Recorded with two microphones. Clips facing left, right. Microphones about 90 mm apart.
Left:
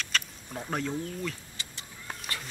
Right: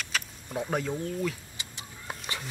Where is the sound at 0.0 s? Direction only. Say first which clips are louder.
Left 1 dB; 5° right (ahead or behind).